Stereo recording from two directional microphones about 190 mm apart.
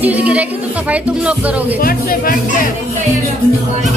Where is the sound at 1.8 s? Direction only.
50° left (ahead or behind).